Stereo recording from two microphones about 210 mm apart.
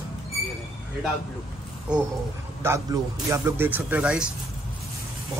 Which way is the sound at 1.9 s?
5° right (ahead or behind).